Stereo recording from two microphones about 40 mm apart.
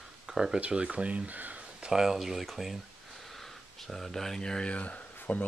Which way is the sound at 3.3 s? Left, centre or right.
Centre.